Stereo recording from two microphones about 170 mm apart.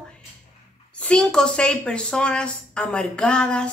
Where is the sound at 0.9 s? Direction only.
5° left (ahead or behind).